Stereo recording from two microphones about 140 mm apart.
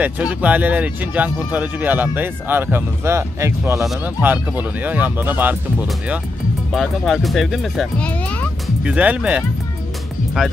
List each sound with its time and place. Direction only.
0.0 s speech: 10° right (ahead or behind)
3.8 s speech: centre (ahead or behind)
4.2 s speech: 10° right (ahead or behind)
6.7 s speech: centre (ahead or behind)
8.8 s speech: 10° right (ahead or behind)